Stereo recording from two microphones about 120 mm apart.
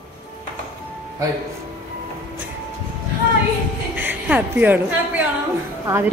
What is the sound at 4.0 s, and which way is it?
A woman's voice, 15° right (ahead or behind).